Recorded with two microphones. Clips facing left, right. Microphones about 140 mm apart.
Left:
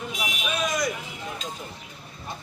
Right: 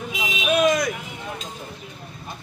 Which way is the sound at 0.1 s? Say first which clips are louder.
Right 11 dB; 65° right (ahead or behind).